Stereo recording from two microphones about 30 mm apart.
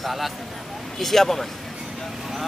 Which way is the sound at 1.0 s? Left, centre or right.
Centre.